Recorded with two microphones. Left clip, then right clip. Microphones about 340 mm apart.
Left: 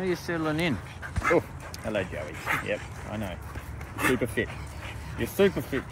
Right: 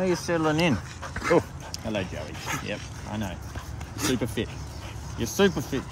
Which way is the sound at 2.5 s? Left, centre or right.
Centre.